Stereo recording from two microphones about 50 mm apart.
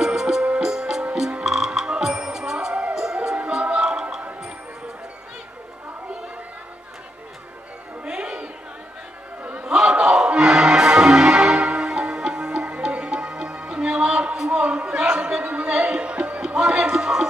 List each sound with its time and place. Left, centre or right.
0.0 s music: centre
8.0 s music: centre
9.4 s music: right
9.8 s music: centre
14.5 s a sound: right
16.5 s music: centre